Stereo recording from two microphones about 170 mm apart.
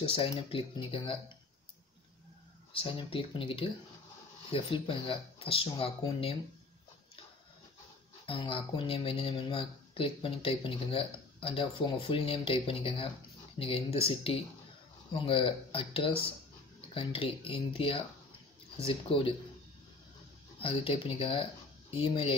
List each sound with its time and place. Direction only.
0.1 s speech: 30° left (ahead or behind)
2.7 s speech: 30° left (ahead or behind)
8.3 s speech: 30° left (ahead or behind)
20.6 s speech: 30° left (ahead or behind)